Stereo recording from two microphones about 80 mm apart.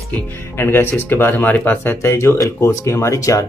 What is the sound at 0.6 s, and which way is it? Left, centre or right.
Speech, left.